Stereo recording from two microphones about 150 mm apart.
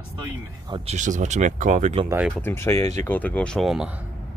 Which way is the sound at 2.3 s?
15° left (ahead or behind).